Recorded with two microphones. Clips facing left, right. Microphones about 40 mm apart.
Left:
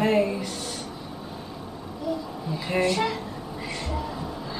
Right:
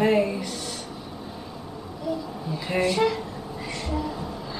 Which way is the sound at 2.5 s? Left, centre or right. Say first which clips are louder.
Even; centre.